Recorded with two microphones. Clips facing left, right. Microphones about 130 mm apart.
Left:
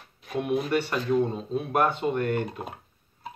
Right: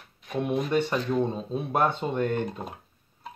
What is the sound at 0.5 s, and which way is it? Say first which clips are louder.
Speech: right 1 dB; 5° left (ahead or behind).